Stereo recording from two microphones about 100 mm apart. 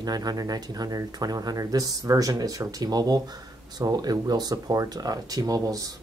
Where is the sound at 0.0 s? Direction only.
40° right (ahead or behind).